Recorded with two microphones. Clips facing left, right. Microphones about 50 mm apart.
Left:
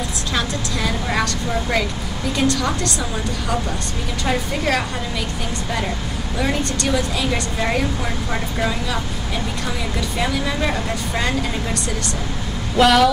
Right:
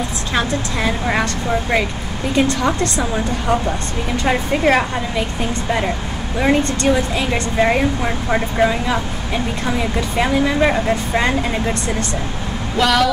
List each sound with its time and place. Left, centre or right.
0.3 s speech: right
6.3 s speech: right
12.7 s speech: centre